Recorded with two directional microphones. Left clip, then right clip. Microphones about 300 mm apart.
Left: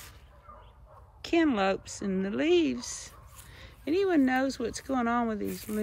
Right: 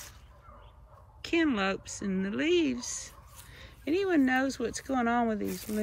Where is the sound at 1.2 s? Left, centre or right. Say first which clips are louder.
Left 2 dB; centre.